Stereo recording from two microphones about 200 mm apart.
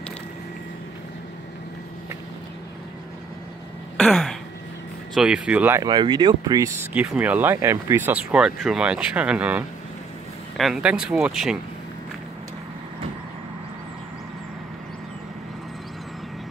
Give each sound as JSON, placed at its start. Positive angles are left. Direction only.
{"t": 3.9, "sound": "throat clearing", "side_deg": 0}
{"t": 5.1, "sound": "speech", "side_deg": -5}
{"t": 5.8, "sound": "speech", "side_deg": -20}